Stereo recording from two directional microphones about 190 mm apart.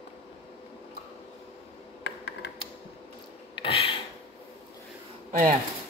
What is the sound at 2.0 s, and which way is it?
Mechanisms, 65° left (ahead or behind).